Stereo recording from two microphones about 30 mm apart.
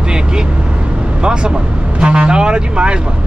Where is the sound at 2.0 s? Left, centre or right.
Right.